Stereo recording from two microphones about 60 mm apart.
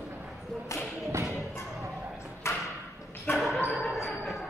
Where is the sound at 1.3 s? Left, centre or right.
Left.